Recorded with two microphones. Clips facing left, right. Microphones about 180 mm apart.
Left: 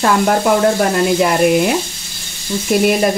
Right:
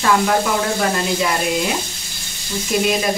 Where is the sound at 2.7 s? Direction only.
55° left (ahead or behind).